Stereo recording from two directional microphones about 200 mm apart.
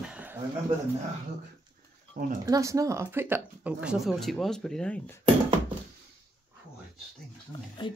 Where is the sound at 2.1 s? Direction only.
40° right (ahead or behind).